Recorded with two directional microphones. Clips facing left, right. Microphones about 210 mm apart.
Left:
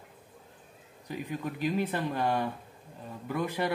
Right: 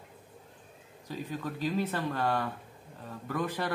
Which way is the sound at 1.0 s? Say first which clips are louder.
Left 1 dB; 15° left (ahead or behind).